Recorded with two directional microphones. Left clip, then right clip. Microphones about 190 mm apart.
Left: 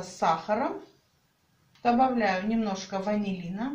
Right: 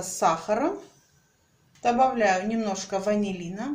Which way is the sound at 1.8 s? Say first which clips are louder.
Right 2 dB; 45° right (ahead or behind).